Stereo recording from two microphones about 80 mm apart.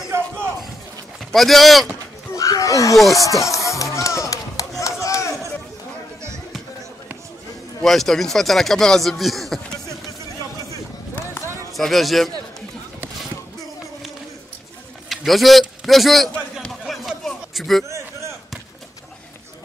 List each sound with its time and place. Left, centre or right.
1.3 s speech: centre
2.3 s a sound: left
3.2 s music: left
7.8 s speech: centre
11.7 s speech: centre
15.0 s a man's voice: centre
16.8 s chatter: centre
17.8 s a sound: right